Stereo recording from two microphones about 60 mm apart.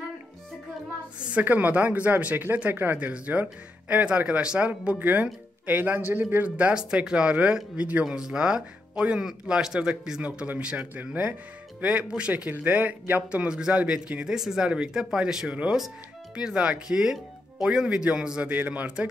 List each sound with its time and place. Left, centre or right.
1.4 s speech: right
18.5 s speech: right